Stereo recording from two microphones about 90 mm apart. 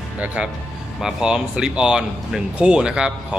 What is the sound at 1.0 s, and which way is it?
Speech, 10° right (ahead or behind).